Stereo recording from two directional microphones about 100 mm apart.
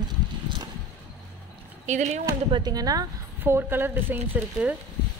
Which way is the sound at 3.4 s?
20° right (ahead or behind).